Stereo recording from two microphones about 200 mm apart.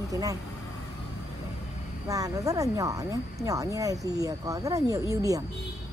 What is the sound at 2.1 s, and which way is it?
Speech, 15° right (ahead or behind).